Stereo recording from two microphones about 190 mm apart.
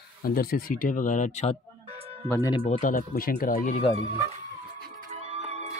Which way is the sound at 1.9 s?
30° right (ahead or behind).